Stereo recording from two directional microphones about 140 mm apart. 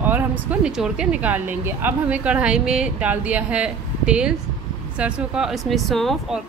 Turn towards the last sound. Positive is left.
turn(degrees=0)  # may be behind; listen again after turning